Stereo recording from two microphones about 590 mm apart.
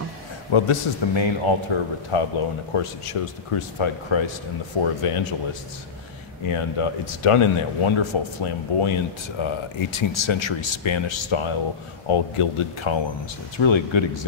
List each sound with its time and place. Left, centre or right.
0.5 s a man's voice: left